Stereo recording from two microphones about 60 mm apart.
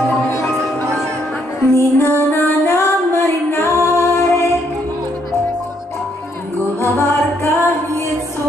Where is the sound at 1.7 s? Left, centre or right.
Left.